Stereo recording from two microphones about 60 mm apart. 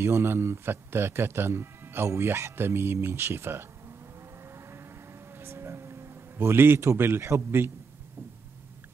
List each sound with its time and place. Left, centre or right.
0.0 s a man's voice: right
4.6 s vehicle: right
5.4 s a sound: right
7.0 s a man's voice: right